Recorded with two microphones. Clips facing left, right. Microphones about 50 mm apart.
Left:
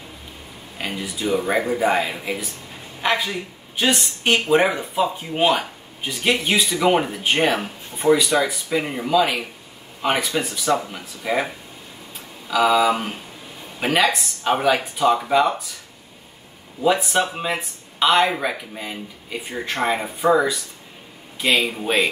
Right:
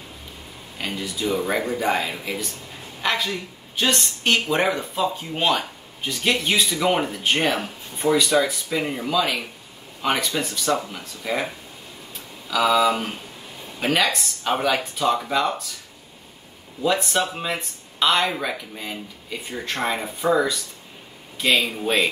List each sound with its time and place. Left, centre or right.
0.7 s speech: centre
3.0 s a sound: centre
3.3 s a man's voice: centre
16.8 s speech: centre
21.4 s speech: centre